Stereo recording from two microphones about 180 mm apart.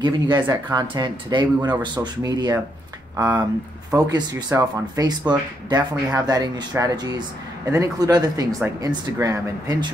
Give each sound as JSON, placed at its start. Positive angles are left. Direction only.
{"t": 0.0, "sound": "speech", "side_deg": -25}